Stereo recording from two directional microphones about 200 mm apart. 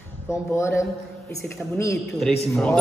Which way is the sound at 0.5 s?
15° left (ahead or behind).